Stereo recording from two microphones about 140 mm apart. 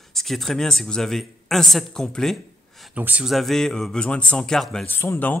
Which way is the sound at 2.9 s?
10° right (ahead or behind).